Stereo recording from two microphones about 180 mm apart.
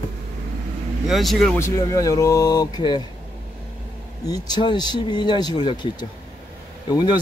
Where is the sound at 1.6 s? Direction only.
20° left (ahead or behind).